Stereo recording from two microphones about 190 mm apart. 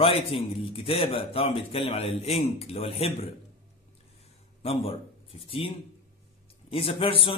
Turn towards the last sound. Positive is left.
turn(degrees=30)  # may be behind; listen again after turning